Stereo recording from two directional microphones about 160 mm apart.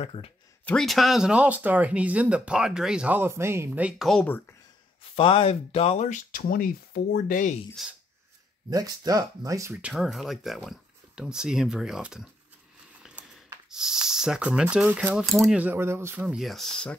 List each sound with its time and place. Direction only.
0.0 s speech: 40° left (ahead or behind)
0.7 s speech: centre (ahead or behind)
4.1 s speech: 10° left (ahead or behind)
5.1 s speech: 35° left (ahead or behind); by 7.5 s 55° left (ahead or behind)
7.8 s speech: centre (ahead or behind)
8.6 s speech: 25° right (ahead or behind)
9.8 s speech: 5° right (ahead or behind)
13.0 s a sound: 5° right (ahead or behind)
14.0 s speech: 5° right (ahead or behind)
15.6 s speech: 15° right (ahead or behind); by 16.9 s 5° left (ahead or behind)